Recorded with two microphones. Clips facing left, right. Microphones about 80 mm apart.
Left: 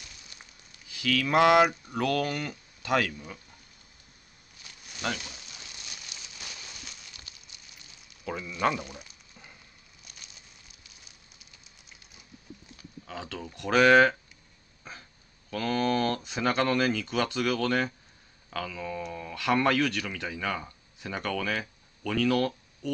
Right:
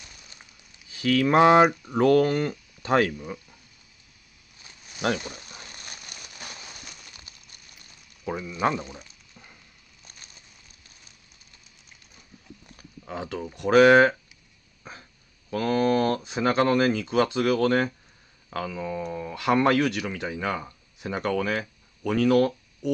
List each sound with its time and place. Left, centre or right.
0.8 s speech: right
5.2 s a sound: right
8.3 s speech: centre
8.9 s a sound: centre
13.0 s speech: centre
14.8 s dog: centre
15.5 s speech: centre